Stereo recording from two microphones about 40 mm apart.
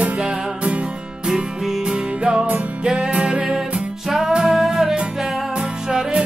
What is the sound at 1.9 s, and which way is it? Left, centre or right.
Music, centre.